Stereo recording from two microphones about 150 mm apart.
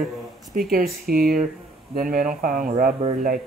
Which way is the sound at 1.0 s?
75° right (ahead or behind).